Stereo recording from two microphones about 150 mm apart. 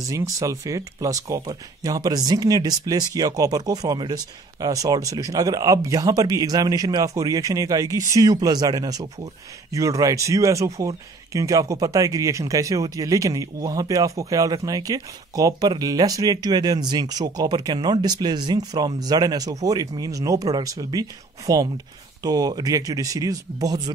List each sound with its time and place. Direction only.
0.0 s speech: 20° right (ahead or behind)